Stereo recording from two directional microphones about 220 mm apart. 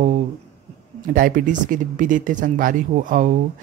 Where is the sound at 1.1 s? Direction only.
40° right (ahead or behind).